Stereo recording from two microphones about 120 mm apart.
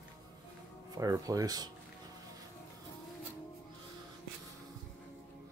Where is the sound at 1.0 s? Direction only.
30° right (ahead or behind).